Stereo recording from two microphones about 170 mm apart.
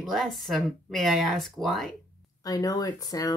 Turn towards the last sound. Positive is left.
turn(degrees=20)  # may be behind; listen again after turning